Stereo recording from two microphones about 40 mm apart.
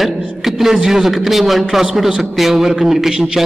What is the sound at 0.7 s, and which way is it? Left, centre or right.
A man's voice, centre.